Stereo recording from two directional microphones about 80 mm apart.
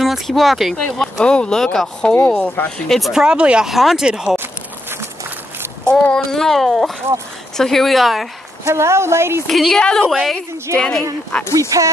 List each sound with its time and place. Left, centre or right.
0.0 s a woman's voice: centre
2.9 s speech: centre
6.1 s speech: centre
8.6 s a woman's voice: right
9.5 s a woman's voice: centre
11.7 s speech: right